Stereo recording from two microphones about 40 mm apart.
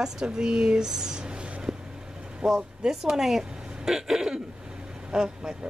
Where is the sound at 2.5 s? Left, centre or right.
Centre.